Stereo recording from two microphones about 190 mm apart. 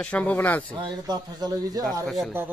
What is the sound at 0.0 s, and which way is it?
Speech, 5° left (ahead or behind).